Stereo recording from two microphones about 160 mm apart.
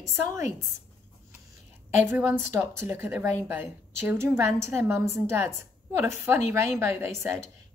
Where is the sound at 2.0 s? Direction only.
15° right (ahead or behind).